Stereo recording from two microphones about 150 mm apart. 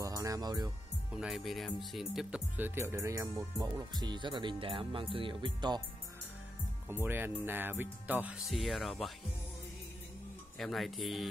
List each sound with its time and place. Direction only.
0.0 s speech: 25° right (ahead or behind)
1.1 s speech: 5° right (ahead or behind); by 5.8 s 30° right (ahead or behind)
6.9 s speech: 15° right (ahead or behind)
8.5 s speech: centre (ahead or behind)
10.6 s speech: centre (ahead or behind)